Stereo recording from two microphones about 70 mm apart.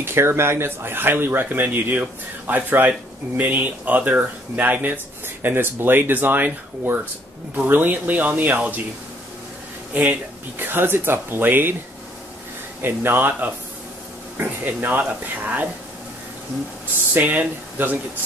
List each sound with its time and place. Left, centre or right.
0.0 s speech: right
10.6 s speech: right
12.8 s speech: right
17.1 s speech: right